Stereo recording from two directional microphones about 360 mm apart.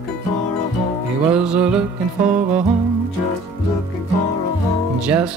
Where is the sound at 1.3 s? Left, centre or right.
Centre.